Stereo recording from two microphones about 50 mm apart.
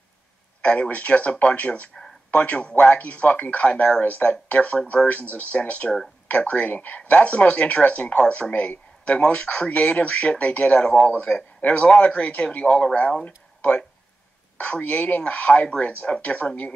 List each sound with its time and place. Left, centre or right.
0.6 s speech: left